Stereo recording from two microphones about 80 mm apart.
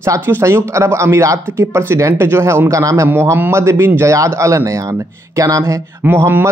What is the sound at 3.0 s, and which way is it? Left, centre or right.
Speech, right.